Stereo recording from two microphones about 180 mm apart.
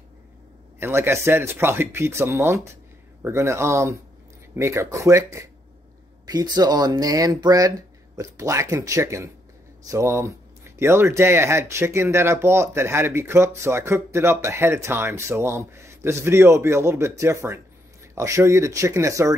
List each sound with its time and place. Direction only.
0.7 s speech: 15° right (ahead or behind)